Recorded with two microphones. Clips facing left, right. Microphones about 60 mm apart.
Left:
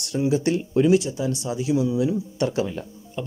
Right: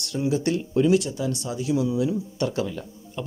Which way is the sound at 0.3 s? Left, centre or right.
Centre.